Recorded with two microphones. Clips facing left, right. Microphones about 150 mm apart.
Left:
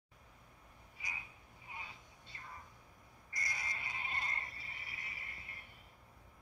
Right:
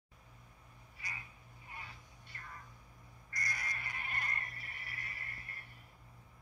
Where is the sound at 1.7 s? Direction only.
20° left (ahead or behind).